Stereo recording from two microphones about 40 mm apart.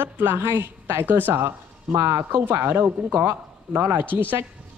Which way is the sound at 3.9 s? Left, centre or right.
Right.